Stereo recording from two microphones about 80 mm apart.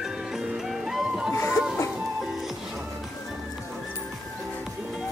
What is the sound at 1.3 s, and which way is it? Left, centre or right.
Music, left.